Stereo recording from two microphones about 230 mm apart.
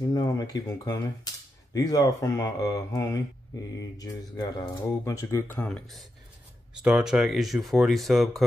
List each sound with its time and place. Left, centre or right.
0.1 s speech: centre